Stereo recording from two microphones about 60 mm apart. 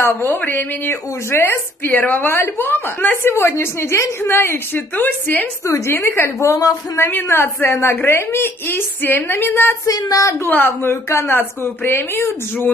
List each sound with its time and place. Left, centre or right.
0.0 s a woman's voice: left
1.9 s a woman's voice: left
3.3 s a woman's voice: left
5.9 s a woman's voice: left
9.8 s speech: left
10.5 s a woman's voice: left